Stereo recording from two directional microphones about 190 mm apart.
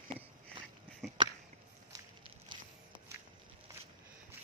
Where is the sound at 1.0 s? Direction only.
Centre (ahead or behind).